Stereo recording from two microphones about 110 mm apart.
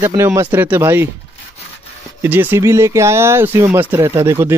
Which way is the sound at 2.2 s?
15° right (ahead or behind).